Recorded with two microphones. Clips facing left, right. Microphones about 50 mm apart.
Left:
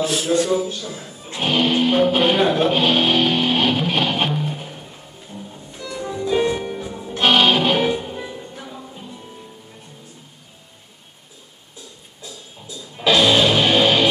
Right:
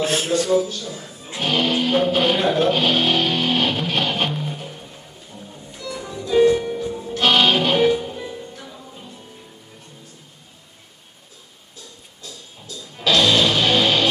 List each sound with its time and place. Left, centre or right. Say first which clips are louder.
0.0 s speech: even; right
0.6 s speech: right 2 dB; centre
1.4 s music: left 2 dB; centre
5.9 s music: right 3 dB; centre
12.2 s music: left 2 dB; centre